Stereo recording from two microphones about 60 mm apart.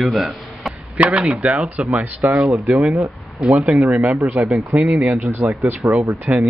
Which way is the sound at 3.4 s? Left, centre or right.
Centre.